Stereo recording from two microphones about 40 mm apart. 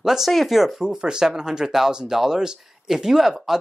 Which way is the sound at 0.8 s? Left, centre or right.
Centre.